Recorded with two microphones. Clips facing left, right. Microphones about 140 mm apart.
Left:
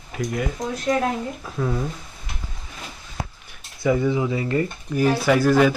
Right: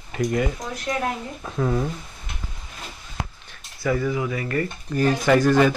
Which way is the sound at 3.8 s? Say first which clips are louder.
Left 3 dB; 20° left (ahead or behind).